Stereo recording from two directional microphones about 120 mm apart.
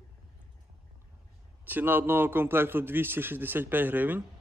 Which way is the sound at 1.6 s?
15° right (ahead or behind).